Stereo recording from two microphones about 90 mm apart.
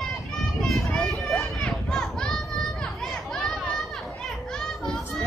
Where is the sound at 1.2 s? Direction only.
5° left (ahead or behind).